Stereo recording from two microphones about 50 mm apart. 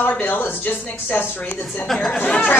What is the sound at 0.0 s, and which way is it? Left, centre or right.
Speech, left.